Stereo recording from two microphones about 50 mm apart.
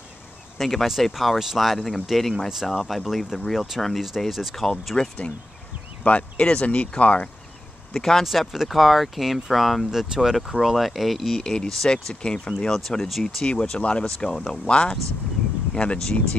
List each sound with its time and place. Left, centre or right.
0.6 s speech: centre
4.9 s speech: centre
6.0 s speech: left
7.9 s speech: centre
11.4 s speech: centre
13.5 s speech: centre